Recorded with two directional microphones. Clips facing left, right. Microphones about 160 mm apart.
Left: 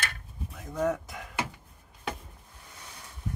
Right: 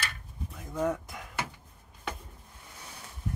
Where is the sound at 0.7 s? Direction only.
Centre (ahead or behind).